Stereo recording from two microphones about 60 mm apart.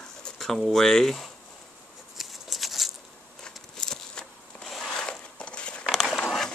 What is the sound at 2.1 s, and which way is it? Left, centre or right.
Patter, centre.